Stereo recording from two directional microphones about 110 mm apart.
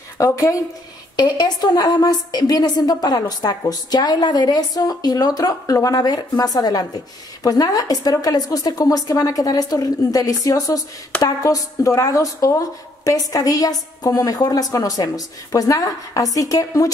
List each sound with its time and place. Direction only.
0.2 s a woman's voice: 30° left (ahead or behind)
1.1 s a woman's voice: 40° left (ahead or behind)